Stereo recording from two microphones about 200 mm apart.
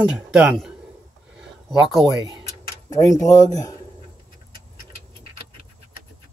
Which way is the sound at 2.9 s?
15° left (ahead or behind).